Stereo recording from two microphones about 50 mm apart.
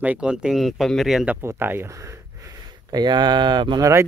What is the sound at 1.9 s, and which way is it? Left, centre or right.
Speech, right.